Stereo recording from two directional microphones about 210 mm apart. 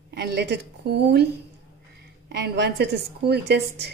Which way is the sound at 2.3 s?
50° right (ahead or behind).